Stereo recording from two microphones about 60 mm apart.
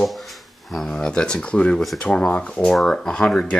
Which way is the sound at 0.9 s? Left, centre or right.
Centre.